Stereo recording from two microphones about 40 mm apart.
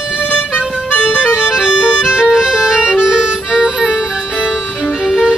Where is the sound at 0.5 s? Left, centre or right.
Left.